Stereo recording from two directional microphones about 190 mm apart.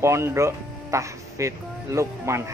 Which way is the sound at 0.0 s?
15° right (ahead or behind).